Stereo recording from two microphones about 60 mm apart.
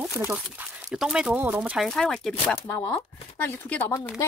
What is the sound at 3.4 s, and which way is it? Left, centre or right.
Speech, left.